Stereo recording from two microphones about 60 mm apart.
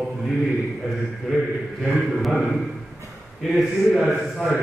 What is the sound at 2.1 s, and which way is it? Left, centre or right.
A man's voice, centre.